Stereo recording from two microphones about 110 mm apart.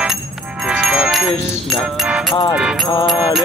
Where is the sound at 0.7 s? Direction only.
5° right (ahead or behind).